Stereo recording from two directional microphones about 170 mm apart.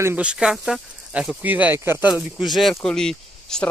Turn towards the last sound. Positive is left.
turn(degrees=5)  # may be behind; listen again after turning